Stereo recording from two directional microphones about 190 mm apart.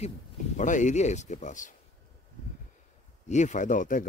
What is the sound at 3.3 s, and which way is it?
Speech, 40° left (ahead or behind).